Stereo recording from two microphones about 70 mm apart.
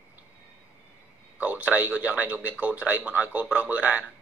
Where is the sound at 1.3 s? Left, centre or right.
Right.